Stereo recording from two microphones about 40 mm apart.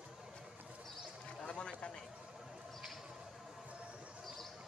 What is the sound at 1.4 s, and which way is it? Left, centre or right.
Run, left.